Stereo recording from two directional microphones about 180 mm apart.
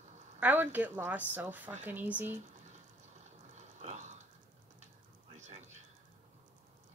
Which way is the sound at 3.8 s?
40° right (ahead or behind).